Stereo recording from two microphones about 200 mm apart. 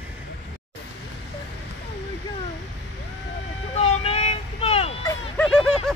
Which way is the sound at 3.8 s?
30° left (ahead or behind).